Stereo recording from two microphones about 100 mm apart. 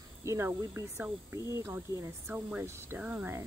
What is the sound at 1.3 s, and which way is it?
Speech, 30° right (ahead or behind).